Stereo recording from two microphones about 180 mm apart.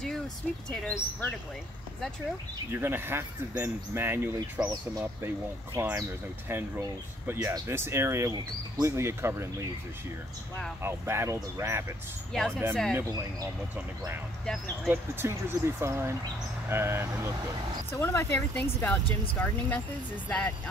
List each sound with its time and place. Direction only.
0.7 s speech: 5° left (ahead or behind)
2.7 s speech: 10° right (ahead or behind)
10.8 s speech: 15° right (ahead or behind)
17.9 s speech: 15° left (ahead or behind)